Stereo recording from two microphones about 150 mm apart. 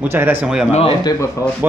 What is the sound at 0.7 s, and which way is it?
Speech, 40° left (ahead or behind).